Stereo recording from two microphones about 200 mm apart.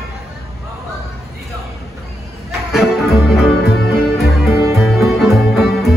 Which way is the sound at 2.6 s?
Centre (ahead or behind).